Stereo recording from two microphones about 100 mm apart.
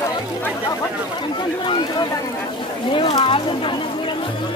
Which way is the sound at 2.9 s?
60° left (ahead or behind).